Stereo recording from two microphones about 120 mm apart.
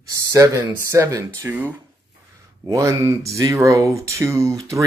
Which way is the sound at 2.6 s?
25° right (ahead or behind).